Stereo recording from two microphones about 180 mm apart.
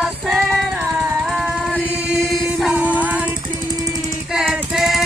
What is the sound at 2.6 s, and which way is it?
Music, 10° right (ahead or behind).